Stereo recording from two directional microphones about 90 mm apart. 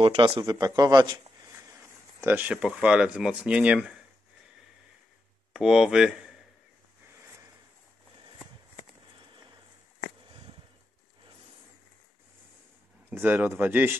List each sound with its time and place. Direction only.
0.0 s speech: 55° right (ahead or behind)
1.5 s speech: 30° right (ahead or behind); by 4.0 s 10° right (ahead or behind)
5.5 s speech: 5° right (ahead or behind)
9.1 s a sound: 60° right (ahead or behind)
13.1 s speech: 20° right (ahead or behind)